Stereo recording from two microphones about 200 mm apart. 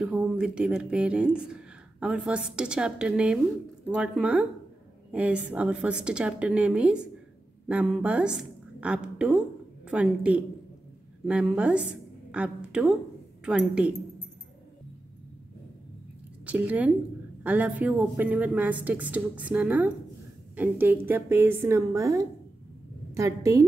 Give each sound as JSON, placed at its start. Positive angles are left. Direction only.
{"t": 0.0, "sound": "a woman's voice", "side_deg": -5}
{"t": 16.4, "sound": "a woman's voice", "side_deg": -10}